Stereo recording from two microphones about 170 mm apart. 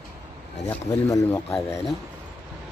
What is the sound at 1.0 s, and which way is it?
Speech, 20° left (ahead or behind).